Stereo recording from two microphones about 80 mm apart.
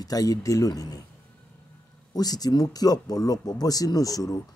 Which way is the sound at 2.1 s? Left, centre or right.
Left.